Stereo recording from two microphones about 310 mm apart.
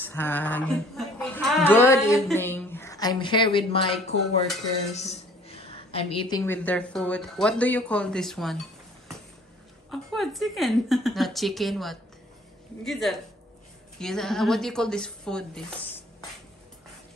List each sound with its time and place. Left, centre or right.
0.0 s a woman's voice: centre
4.9 s a sound: left
6.2 s speech: centre
9.8 s speech: centre